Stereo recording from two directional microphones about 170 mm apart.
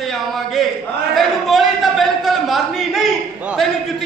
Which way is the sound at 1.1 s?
Centre (ahead or behind).